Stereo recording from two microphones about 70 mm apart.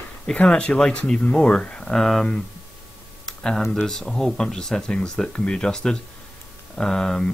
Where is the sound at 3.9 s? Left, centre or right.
Centre.